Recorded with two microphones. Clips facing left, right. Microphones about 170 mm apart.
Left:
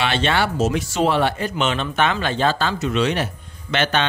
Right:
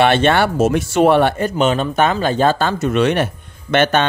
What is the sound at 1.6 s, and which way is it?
Speech, 40° right (ahead or behind).